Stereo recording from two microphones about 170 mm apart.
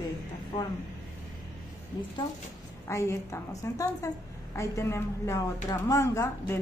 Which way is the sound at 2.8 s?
15° left (ahead or behind).